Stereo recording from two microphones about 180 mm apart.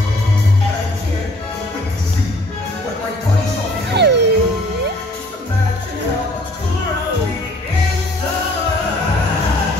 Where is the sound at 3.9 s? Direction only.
70° right (ahead or behind).